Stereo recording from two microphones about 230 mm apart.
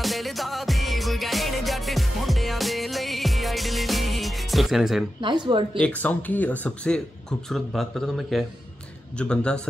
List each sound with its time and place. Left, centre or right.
0.0 s music: centre
5.2 s speech: centre
5.8 s speech: centre